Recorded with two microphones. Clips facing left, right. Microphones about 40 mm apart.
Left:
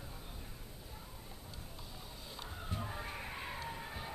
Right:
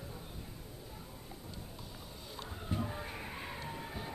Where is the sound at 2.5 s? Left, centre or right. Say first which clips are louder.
Right 5 dB; centre.